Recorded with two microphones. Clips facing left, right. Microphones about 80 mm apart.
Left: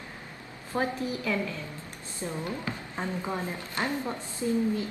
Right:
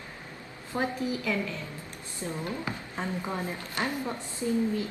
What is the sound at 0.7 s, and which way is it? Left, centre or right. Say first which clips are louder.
A woman's voice: even; left.